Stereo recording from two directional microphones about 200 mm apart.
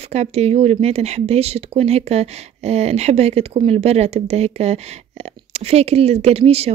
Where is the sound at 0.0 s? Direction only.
30° right (ahead or behind).